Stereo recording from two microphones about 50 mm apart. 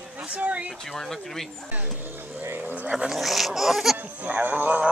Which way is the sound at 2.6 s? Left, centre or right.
Right.